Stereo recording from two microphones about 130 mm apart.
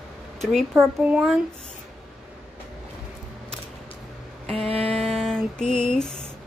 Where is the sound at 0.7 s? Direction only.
10° right (ahead or behind).